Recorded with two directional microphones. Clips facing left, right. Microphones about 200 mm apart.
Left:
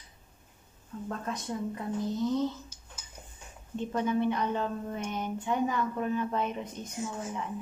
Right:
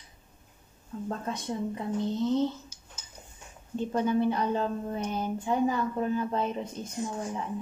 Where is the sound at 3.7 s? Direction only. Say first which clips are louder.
Right 3 dB; 35° right (ahead or behind).